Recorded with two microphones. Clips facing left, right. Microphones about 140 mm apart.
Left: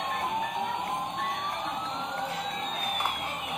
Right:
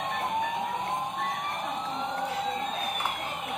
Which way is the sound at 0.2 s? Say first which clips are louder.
Right 3 dB; centre (ahead or behind).